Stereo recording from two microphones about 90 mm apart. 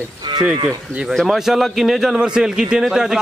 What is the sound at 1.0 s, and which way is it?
A man's voice, centre (ahead or behind).